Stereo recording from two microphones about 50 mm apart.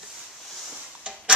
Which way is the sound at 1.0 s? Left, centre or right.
Centre.